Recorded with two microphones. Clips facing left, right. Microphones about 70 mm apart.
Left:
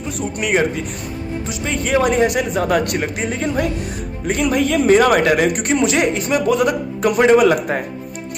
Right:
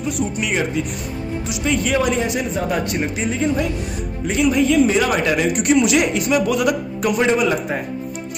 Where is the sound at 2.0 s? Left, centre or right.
Left.